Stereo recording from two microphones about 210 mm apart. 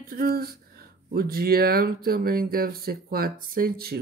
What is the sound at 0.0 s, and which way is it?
Speech, 45° right (ahead or behind).